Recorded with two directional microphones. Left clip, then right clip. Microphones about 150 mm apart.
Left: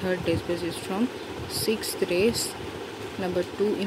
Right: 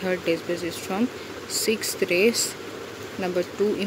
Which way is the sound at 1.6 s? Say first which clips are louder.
Right 2 dB; centre (ahead or behind).